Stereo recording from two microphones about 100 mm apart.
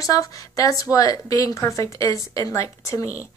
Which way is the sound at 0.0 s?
35° left (ahead or behind).